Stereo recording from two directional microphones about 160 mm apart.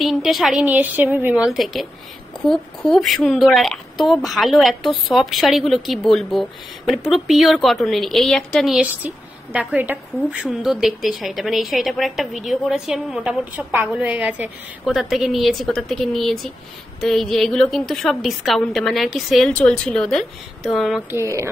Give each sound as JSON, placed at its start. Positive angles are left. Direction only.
{"t": 0.0, "sound": "a woman's voice", "side_deg": 0}
{"t": 21.1, "sound": "speech", "side_deg": -15}